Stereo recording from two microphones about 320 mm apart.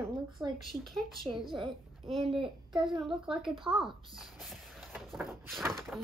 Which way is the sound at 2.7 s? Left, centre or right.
Centre.